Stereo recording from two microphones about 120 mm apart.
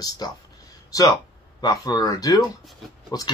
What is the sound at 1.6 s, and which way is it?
Speech, 30° left (ahead or behind).